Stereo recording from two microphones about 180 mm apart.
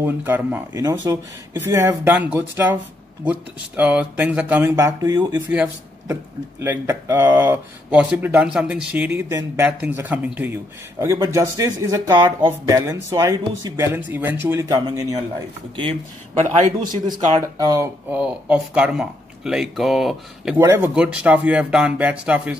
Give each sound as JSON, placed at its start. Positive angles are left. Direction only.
{"t": 0.0, "sound": "speech", "side_deg": -10}
{"t": 6.6, "sound": "speech", "side_deg": -15}
{"t": 18.2, "sound": "speech", "side_deg": -5}
{"t": 20.5, "sound": "speech", "side_deg": -15}